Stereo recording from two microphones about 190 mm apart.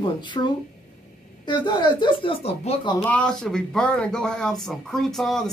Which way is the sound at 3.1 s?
5° left (ahead or behind).